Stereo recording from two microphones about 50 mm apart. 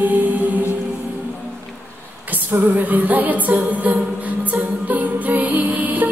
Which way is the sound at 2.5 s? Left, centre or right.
Right.